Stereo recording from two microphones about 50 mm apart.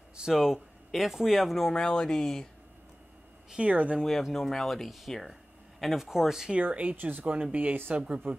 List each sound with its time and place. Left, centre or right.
0.3 s speech: centre
1.6 s speech: centre
3.5 s speech: right
4.0 s speech: centre
6.6 s speech: right